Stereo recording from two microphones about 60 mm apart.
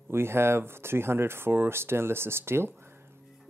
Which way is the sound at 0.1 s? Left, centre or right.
Right.